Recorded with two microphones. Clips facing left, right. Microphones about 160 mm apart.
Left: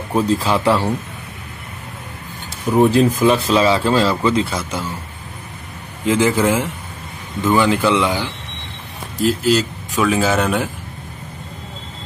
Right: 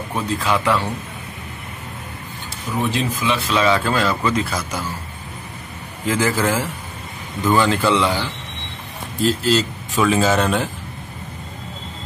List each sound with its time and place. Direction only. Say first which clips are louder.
0.1 s speech: left 5 dB; 30° left (ahead or behind)
2.8 s speech: left 10 dB; 45° left (ahead or behind)
3.5 s speech: left 3 dB; 30° left (ahead or behind)
6.2 s speech: left 3 dB; 15° left (ahead or behind)